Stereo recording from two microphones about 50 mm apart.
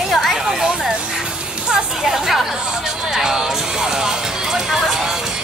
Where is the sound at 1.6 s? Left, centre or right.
Centre.